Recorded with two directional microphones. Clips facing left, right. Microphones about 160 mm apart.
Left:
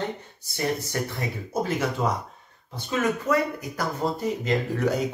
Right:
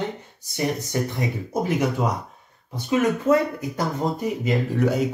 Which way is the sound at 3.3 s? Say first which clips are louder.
Right 5 dB; 25° right (ahead or behind).